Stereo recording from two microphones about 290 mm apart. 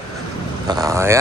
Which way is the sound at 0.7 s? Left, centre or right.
Centre.